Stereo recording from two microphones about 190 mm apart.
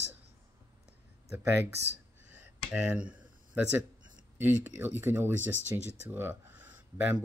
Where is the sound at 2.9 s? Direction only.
10° right (ahead or behind).